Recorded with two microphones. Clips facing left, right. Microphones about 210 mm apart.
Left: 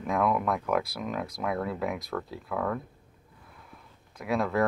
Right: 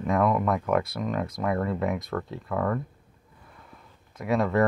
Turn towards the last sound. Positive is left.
turn(degrees=0)  # may be behind; listen again after turning